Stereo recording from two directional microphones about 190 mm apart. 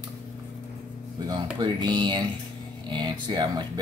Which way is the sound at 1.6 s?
25° right (ahead or behind).